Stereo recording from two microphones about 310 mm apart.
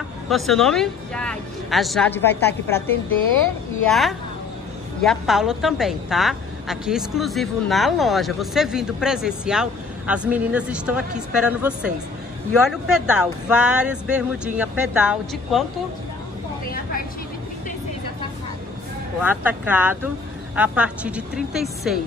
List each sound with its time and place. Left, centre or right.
0.3 s a woman's voice: centre
3.8 s a woman's voice: centre
16.6 s vehicle: left
19.2 s a woman's voice: centre